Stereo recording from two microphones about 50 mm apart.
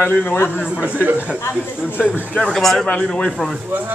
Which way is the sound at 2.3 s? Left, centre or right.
Centre.